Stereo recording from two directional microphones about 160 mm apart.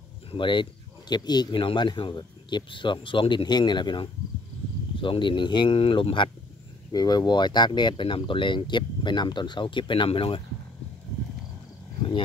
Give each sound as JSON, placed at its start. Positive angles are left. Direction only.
{"t": 0.3, "sound": "speech", "side_deg": 30}